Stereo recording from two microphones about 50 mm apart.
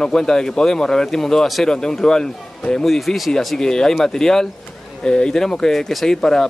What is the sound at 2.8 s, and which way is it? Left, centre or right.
Speech, centre.